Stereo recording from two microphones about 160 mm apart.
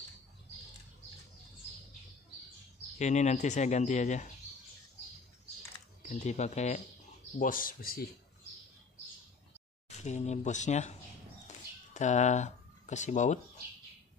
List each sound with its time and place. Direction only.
3.0 s speech: 45° left (ahead or behind)
6.0 s speech: 45° left (ahead or behind)
7.3 s speech: 60° left (ahead or behind)
9.8 s speech: 45° left (ahead or behind)
11.4 s a sound: 50° left (ahead or behind)